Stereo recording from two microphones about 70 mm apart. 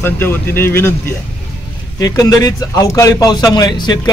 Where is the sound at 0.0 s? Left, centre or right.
Left.